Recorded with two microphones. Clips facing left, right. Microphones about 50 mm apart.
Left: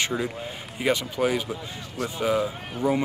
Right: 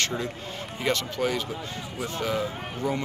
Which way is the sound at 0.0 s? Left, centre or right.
Centre.